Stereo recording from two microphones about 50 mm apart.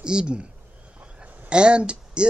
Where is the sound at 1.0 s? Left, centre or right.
Right.